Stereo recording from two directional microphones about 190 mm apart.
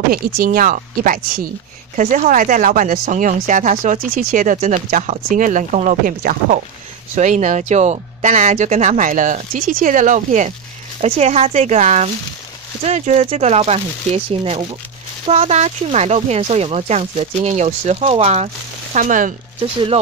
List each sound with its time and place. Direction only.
0.1 s speech: 50° right (ahead or behind)
19.6 s speech: 30° right (ahead or behind)